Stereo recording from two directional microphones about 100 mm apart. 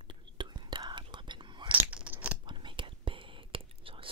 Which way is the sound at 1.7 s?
15° right (ahead or behind).